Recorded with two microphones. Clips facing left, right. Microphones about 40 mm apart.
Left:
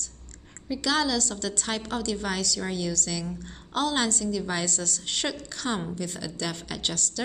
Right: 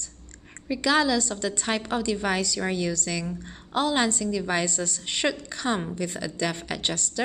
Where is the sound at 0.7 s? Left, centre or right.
Right.